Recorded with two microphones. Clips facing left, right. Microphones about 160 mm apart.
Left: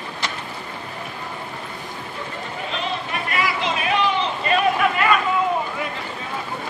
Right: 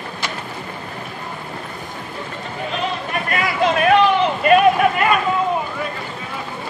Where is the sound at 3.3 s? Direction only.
55° right (ahead or behind).